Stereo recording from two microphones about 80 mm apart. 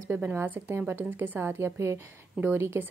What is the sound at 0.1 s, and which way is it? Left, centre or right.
A woman's voice, right.